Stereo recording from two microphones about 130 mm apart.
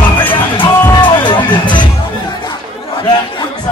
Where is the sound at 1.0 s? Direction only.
40° left (ahead or behind).